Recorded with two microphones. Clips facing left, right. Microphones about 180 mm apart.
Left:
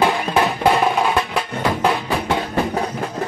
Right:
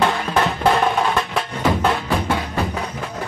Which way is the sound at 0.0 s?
10° left (ahead or behind).